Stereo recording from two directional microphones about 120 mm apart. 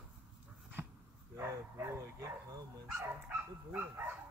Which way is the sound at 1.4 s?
20° right (ahead or behind).